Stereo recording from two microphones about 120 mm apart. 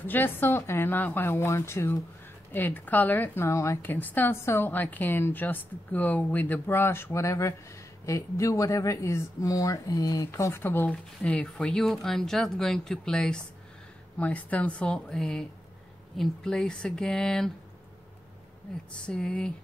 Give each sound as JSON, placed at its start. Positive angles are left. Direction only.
{"t": 0.0, "sound": "a woman's voice", "side_deg": 15}
{"t": 19.0, "sound": "speech", "side_deg": 5}